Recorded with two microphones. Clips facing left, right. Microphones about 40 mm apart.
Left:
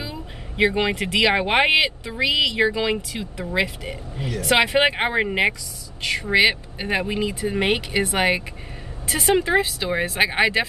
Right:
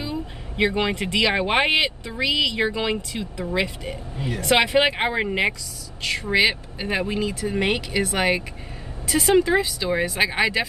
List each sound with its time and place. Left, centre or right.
0.7 s speech: centre